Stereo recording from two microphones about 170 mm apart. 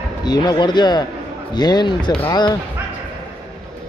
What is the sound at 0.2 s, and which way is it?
Speech, 25° left (ahead or behind).